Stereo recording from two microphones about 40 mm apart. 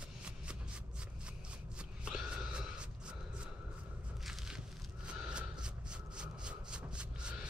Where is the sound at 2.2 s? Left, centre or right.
Right.